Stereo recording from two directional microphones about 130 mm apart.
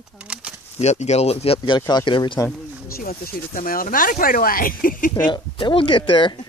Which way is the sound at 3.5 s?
90° left.